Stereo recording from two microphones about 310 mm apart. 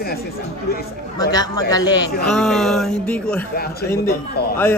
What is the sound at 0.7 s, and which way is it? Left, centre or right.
Speech, left.